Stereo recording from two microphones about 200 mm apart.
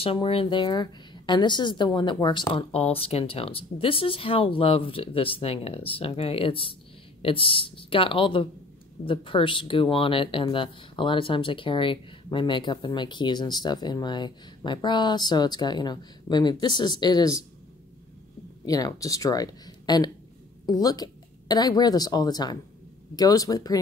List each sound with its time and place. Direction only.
0.0 s speech: 30° left (ahead or behind)
18.7 s a woman's voice: 20° left (ahead or behind)